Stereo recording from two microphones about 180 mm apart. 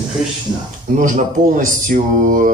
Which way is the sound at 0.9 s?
45° right (ahead or behind).